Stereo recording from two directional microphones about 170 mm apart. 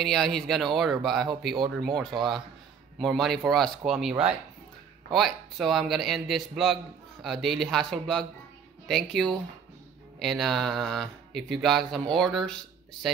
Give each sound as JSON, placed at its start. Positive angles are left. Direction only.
{"t": 0.0, "sound": "a man's voice", "side_deg": 0}